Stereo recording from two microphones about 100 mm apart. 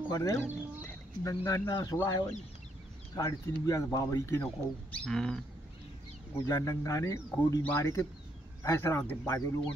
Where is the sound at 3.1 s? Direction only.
35° left (ahead or behind).